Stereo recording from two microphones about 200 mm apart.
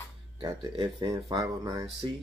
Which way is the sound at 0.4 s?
25° right (ahead or behind).